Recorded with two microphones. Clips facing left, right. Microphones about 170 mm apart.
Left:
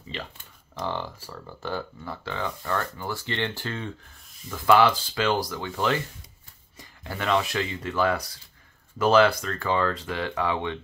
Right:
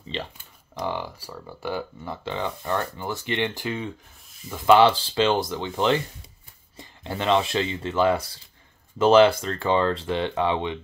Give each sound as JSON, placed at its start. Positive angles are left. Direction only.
{"t": 0.1, "sound": "speech", "side_deg": -25}
{"t": 0.7, "sound": "speech", "side_deg": -10}